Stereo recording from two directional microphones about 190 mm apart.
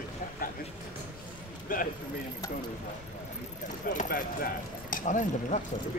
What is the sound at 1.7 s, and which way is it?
Speech, 45° left (ahead or behind).